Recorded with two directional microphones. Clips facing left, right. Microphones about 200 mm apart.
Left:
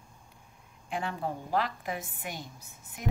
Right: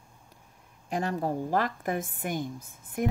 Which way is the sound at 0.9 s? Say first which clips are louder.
Right 5 dB; 40° right (ahead or behind).